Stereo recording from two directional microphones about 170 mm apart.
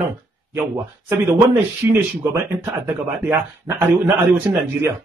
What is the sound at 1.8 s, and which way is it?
A man's voice, 15° right (ahead or behind).